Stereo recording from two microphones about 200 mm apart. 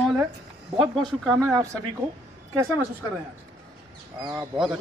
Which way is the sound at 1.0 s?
Centre (ahead or behind).